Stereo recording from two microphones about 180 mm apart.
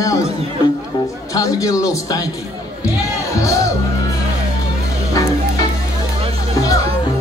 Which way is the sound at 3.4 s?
20° left (ahead or behind).